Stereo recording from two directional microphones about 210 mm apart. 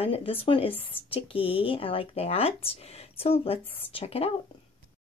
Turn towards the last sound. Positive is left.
turn(degrees=30)  # may be behind; listen again after turning